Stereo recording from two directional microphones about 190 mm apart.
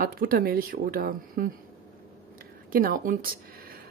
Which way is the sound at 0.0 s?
50° right (ahead or behind).